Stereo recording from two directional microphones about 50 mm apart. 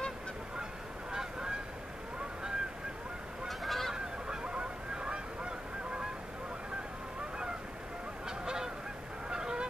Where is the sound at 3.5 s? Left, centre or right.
Centre.